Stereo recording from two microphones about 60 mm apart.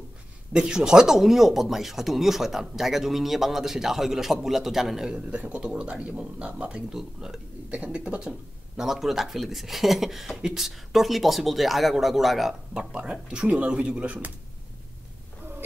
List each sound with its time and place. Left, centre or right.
0.5 s speech: centre
5.3 s speech: right
6.9 s speech: centre
7.7 s speech: centre
12.7 s speech: centre